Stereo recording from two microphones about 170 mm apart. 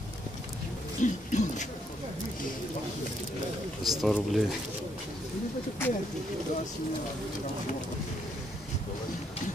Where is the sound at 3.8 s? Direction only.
Centre (ahead or behind).